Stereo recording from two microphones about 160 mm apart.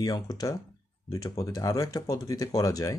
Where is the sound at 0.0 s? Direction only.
25° left (ahead or behind).